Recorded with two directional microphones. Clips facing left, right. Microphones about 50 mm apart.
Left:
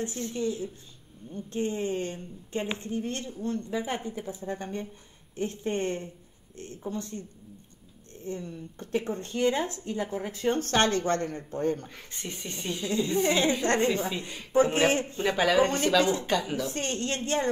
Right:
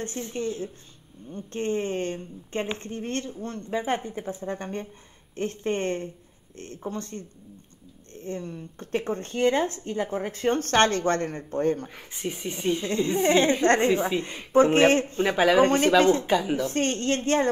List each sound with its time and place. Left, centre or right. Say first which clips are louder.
0.3 s speech: right 1 dB; right
11.9 s speech: right 6 dB; centre
13.3 s a woman's voice: right 5 dB; right
13.8 s speech: right 5 dB; centre
14.5 s speech: right 5 dB; right
15.3 s speech: right 4 dB; centre
15.6 s a woman's voice: right 5 dB; right
16.3 s speech: right 4 dB; centre
16.6 s speech: right 6 dB; right